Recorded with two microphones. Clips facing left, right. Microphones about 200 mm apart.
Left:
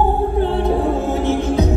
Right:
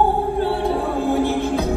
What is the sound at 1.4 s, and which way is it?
Music, 15° left (ahead or behind).